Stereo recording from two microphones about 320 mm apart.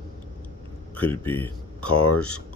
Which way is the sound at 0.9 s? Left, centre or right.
Centre.